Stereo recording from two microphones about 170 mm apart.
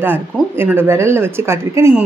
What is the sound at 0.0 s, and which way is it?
Speech, 10° right (ahead or behind).